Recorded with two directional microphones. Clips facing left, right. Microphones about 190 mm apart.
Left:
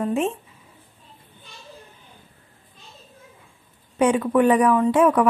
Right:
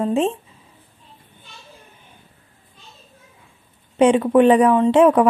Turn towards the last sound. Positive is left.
turn(degrees=-30)  # may be behind; listen again after turning